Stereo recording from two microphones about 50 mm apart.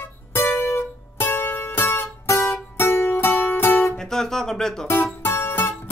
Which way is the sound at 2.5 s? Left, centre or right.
Left.